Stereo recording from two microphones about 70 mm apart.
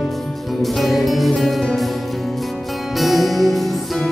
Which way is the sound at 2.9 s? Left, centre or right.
Centre.